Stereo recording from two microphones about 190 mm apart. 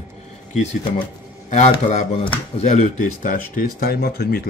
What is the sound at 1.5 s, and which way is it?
Speech, 40° left (ahead or behind).